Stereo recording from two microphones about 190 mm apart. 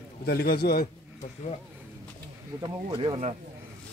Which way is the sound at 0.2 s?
55° left (ahead or behind).